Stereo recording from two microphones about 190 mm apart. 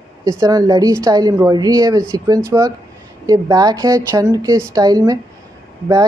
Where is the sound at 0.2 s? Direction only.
15° right (ahead or behind).